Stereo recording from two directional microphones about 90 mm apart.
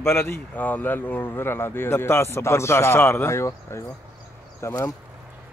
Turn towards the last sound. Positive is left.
turn(degrees=30)  # may be behind; listen again after turning